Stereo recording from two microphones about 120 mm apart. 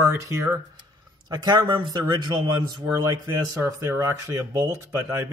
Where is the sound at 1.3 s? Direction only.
35° right (ahead or behind).